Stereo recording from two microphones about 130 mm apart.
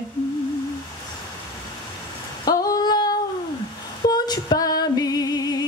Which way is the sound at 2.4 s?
30° left (ahead or behind).